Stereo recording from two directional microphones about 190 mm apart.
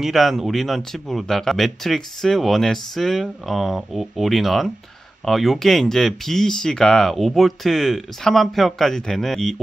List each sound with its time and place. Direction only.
0.0 s speech: centre (ahead or behind)